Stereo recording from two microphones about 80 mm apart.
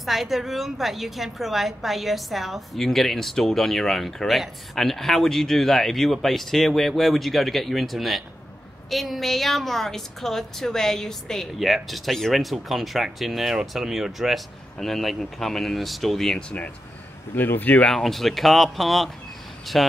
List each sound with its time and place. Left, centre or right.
0.0 s a woman's voice: centre
16.3 s speech: centre
17.9 s a woman's voice: centre